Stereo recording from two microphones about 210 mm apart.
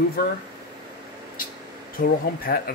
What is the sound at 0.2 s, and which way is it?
Speech, 45° left (ahead or behind).